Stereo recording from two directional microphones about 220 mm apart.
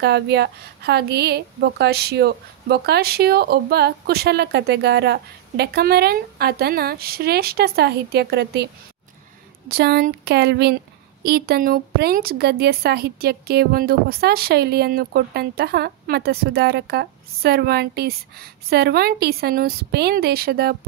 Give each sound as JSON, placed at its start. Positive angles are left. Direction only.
{"t": 0.0, "sound": "a woman's voice", "side_deg": -50}
{"t": 9.7, "sound": "a woman's voice", "side_deg": -45}